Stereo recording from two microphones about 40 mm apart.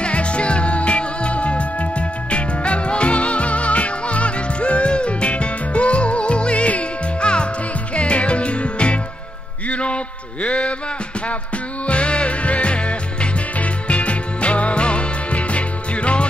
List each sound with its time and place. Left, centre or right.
0.0 s music: left
11.8 s music: left